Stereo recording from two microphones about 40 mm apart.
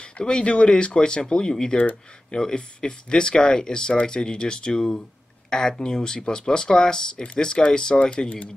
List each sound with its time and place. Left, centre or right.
0.0 s speech: left